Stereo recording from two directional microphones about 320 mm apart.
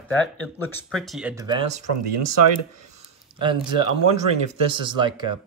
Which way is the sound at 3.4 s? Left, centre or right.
Centre.